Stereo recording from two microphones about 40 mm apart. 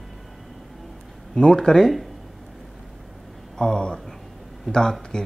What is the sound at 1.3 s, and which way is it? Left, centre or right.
Speech, centre.